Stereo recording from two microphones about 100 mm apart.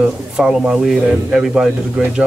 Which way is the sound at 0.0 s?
10° right (ahead or behind).